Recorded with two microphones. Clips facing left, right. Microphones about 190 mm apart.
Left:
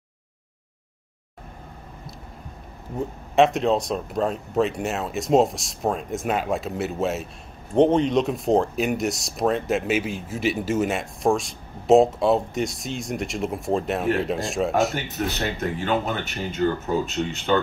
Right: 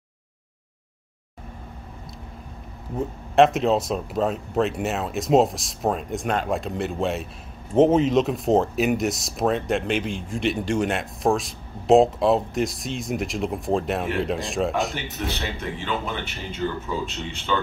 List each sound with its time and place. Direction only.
3.3 s speech: centre (ahead or behind)
15.0 s speech: 45° left (ahead or behind)